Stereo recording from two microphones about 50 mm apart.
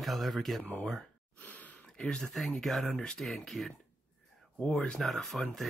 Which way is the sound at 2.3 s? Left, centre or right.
Centre.